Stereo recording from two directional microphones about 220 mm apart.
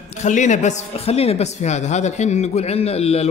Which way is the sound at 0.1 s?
30° left (ahead or behind).